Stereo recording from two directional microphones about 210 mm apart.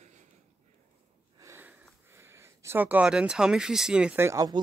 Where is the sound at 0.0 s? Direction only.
35° right (ahead or behind).